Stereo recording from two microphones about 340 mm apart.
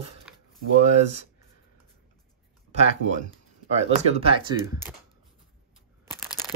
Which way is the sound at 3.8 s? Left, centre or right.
Centre.